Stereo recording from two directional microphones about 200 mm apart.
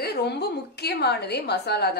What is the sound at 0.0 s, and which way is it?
A woman's voice, 55° left (ahead or behind).